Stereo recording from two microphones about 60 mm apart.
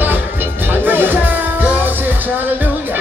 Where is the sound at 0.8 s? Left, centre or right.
Right.